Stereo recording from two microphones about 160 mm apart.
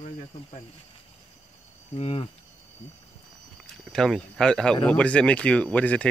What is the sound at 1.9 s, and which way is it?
Speech, 35° left (ahead or behind).